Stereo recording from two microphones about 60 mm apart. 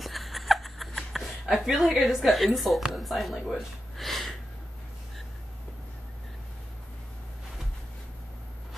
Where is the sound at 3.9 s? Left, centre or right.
Centre.